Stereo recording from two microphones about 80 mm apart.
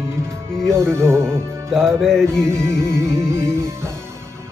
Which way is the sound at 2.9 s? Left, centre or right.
Right.